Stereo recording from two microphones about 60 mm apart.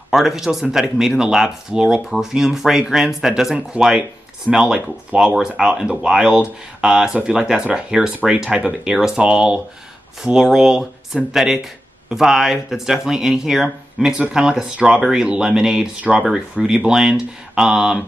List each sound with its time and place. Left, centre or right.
0.1 s speech: centre